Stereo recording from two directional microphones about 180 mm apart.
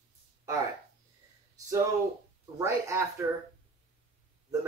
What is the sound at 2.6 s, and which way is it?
Speech, 15° right (ahead or behind).